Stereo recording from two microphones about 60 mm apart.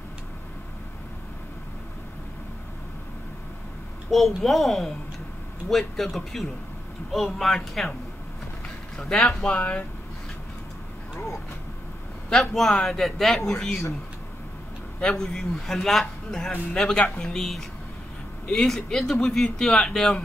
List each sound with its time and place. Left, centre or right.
4.1 s speech: centre
8.9 s a man's voice: centre
9.5 s speech: left
12.3 s a man's voice: centre
15.1 s a man's voice: centre